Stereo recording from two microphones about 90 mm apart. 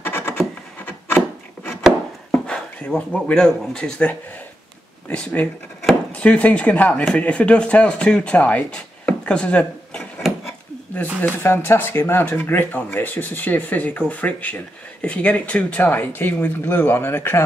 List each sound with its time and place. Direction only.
0.0 s wood: 25° left (ahead or behind)
2.3 s speech: 10° left (ahead or behind)
5.1 s speech: 15° left (ahead or behind)
11.1 s speech: 25° left (ahead or behind)